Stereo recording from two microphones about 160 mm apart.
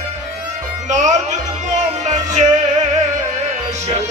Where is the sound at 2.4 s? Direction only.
45° right (ahead or behind).